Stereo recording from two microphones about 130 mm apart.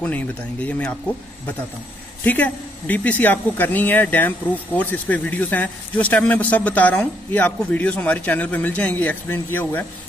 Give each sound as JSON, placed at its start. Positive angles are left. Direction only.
{"t": 0.0, "sound": "speech", "side_deg": 10}
{"t": 2.2, "sound": "speech", "side_deg": 15}